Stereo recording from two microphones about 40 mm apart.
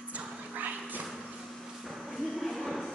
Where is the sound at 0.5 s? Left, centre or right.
Right.